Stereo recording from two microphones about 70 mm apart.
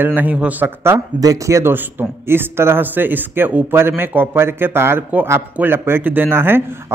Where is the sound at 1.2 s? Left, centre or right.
Right.